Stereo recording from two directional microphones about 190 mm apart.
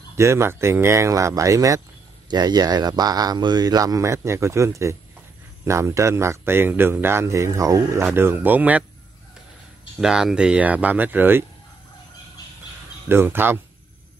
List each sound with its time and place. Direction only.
0.2 s speech: 15° right (ahead or behind)
9.9 s speech: 5° right (ahead or behind)
13.1 s speech: 10° right (ahead or behind)